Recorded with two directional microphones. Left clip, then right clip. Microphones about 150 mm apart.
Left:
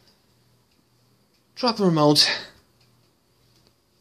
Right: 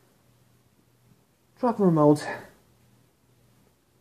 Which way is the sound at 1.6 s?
25° left (ahead or behind).